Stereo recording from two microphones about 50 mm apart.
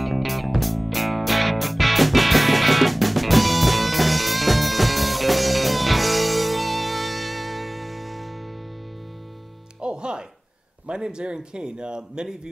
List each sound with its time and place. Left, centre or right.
0.0 s music: centre
9.8 s music: centre
10.9 s speech: centre